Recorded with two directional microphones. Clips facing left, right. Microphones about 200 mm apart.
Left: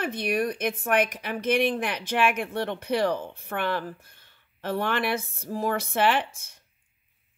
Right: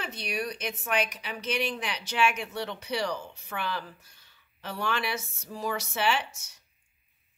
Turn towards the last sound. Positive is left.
turn(degrees=55)  # may be behind; listen again after turning